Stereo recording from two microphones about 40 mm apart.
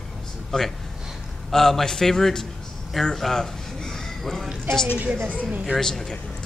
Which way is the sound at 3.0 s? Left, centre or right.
Centre.